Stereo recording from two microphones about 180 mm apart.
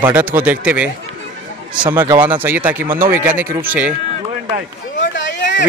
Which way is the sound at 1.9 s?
10° right (ahead or behind).